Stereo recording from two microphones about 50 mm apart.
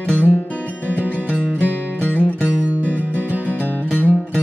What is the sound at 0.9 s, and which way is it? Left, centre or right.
Music, right.